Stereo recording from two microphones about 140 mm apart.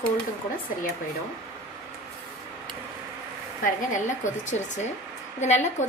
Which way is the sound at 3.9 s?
60° left (ahead or behind).